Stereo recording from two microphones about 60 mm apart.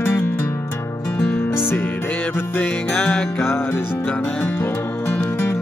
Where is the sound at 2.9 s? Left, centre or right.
Left.